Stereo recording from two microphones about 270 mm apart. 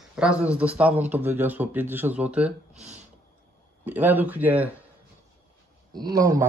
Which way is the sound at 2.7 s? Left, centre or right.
Right.